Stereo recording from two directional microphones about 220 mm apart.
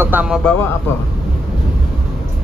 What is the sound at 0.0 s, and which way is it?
Speech, 5° right (ahead or behind).